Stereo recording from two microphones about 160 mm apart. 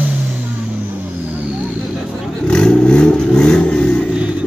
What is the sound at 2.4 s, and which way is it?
Vehicle, 5° left (ahead or behind).